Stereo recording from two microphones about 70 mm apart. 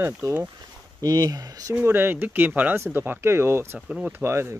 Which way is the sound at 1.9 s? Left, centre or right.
Right.